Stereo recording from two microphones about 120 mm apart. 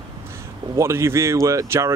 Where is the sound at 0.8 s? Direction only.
20° right (ahead or behind).